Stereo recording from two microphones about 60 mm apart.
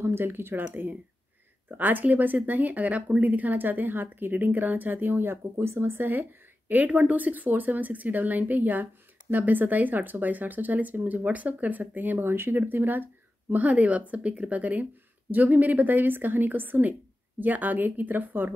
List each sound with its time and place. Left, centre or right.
0.0 s speech: right